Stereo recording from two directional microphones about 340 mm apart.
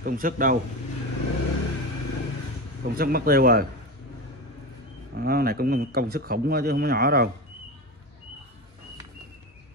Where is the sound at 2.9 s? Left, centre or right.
Right.